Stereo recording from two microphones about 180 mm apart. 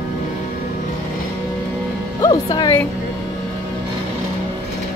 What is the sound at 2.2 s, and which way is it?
Speech, 20° left (ahead or behind).